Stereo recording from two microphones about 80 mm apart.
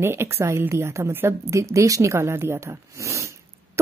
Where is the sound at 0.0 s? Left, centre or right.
Right.